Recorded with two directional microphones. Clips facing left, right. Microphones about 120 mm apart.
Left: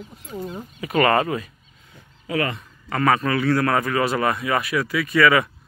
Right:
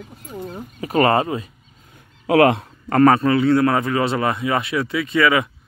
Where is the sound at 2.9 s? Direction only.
40° right (ahead or behind); by 5.5 s 20° right (ahead or behind).